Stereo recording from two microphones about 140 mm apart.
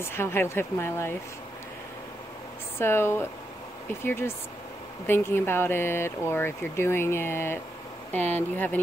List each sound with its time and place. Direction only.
0.0 s speech: 15° left (ahead or behind)
2.8 s speech: 15° left (ahead or behind)